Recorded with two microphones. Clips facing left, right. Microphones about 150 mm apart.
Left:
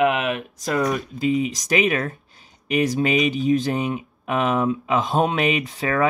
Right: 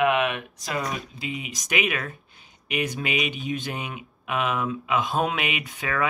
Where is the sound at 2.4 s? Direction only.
40° left (ahead or behind).